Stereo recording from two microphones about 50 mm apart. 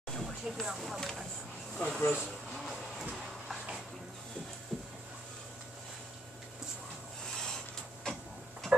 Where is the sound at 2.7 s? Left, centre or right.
Centre.